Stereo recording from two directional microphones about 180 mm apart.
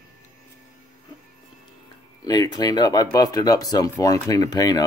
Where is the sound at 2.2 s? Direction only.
25° left (ahead or behind).